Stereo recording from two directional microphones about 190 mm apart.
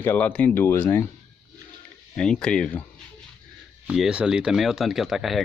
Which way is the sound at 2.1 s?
5° left (ahead or behind).